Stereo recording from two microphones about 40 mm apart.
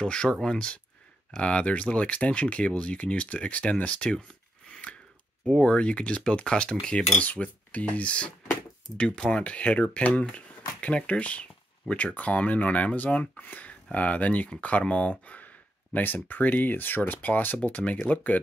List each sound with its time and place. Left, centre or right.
0.0 s speech: left
1.4 s speech: left
5.6 s speech: left
7.2 s speech: left
8.9 s speech: left
17.6 s speech: left